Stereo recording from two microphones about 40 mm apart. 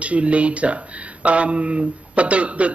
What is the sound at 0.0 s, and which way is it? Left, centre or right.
Speech, right.